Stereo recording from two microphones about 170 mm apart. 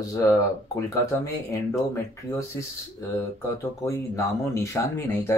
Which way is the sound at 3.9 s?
20° left (ahead or behind).